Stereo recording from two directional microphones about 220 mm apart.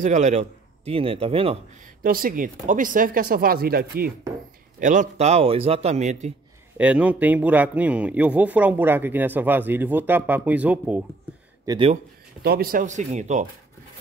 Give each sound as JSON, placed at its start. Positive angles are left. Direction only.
{"t": 0.0, "sound": "a man's voice", "side_deg": -30}
{"t": 2.0, "sound": "a man's voice", "side_deg": -40}
{"t": 6.8, "sound": "a man's voice", "side_deg": -5}
{"t": 11.6, "sound": "speech", "side_deg": -20}
{"t": 12.4, "sound": "speech", "side_deg": -45}